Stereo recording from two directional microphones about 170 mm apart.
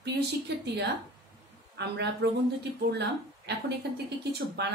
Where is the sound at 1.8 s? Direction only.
85° right.